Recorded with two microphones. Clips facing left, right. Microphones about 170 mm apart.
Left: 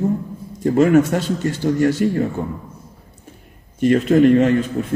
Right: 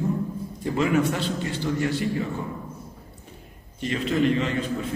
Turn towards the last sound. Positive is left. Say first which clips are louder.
# left 10 dB
turn(degrees=50)  # may be behind; listen again after turning